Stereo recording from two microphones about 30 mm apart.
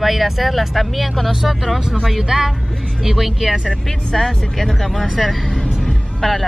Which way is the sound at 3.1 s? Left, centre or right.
Centre.